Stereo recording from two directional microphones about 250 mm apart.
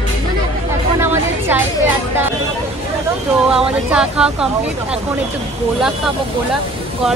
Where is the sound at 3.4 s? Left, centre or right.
Centre.